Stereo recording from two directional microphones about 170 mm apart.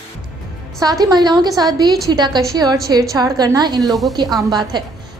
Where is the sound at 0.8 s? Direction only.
20° right (ahead or behind).